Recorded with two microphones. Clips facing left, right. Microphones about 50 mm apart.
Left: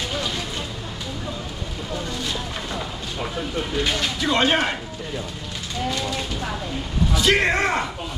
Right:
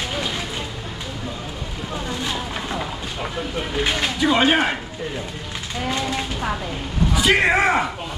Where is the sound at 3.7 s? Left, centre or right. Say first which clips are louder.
Right 2 dB; right.